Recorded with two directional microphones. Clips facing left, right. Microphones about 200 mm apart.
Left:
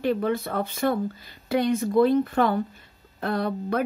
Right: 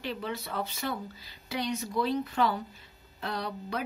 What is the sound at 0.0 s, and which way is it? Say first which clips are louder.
Speech: left 11 dB; 50° left (ahead or behind).